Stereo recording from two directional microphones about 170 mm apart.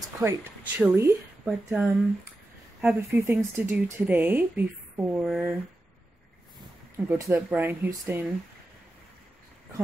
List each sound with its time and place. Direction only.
0.2 s speech: 15° right (ahead or behind)
7.1 s speech: 15° right (ahead or behind)